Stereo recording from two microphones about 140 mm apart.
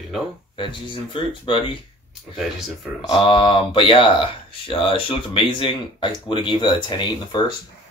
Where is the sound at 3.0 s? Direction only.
35° left (ahead or behind).